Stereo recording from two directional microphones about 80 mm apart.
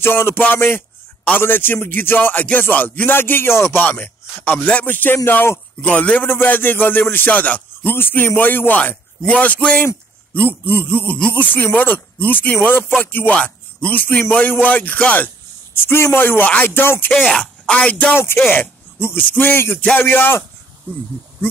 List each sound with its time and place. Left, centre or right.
0.0 s speech: left
17.3 s speech: centre
17.7 s speech: centre
18.1 s a man's voice: left